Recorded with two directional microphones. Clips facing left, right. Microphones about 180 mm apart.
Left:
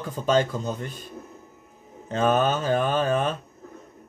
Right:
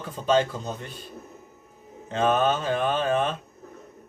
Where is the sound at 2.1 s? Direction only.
40° left (ahead or behind).